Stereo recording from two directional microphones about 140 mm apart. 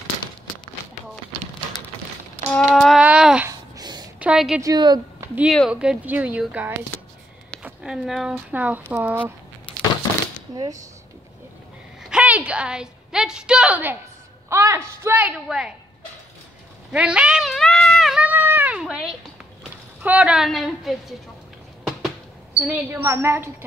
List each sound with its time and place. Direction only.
2.5 s a sound: 5° left (ahead or behind)
3.4 s a sound: 30° right (ahead or behind)
4.2 s a woman's voice: 5° right (ahead or behind)
4.6 s a woman's voice: 25° right (ahead or behind)
5.7 s a woman's voice: 5° right (ahead or behind)
7.6 s a woman's voice: 5° right (ahead or behind)
10.5 s speech: 25° right (ahead or behind)
12.0 s a woman's voice: 5° right (ahead or behind)
16.9 s a sound: 10° right (ahead or behind)
20.0 s a woman's voice: 10° right (ahead or behind)
22.6 s a woman's voice: 10° right (ahead or behind)